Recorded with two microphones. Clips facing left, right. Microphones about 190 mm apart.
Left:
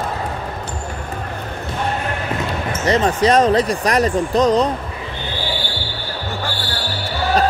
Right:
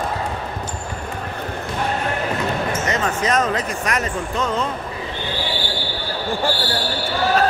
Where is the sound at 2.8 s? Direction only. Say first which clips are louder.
Left 6 dB; 35° left (ahead or behind).